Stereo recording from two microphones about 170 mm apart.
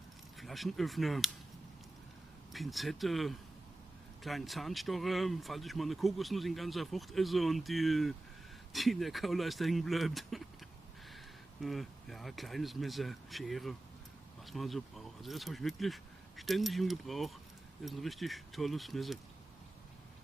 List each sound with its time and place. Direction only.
0.4 s speech: centre (ahead or behind)
2.5 s speech: centre (ahead or behind)
11.6 s speech: centre (ahead or behind)